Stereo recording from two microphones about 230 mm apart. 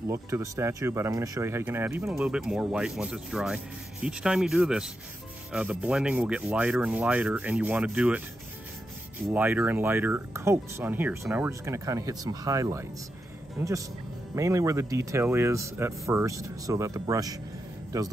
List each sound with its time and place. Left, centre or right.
0.1 s speech: centre
9.3 s speech: centre